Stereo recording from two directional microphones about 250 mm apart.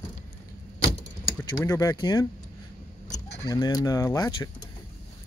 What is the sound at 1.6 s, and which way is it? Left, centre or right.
Speech, centre.